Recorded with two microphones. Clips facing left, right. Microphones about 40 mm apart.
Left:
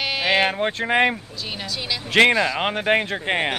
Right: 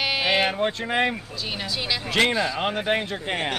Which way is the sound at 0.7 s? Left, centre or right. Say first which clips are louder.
Left 4 dB; left.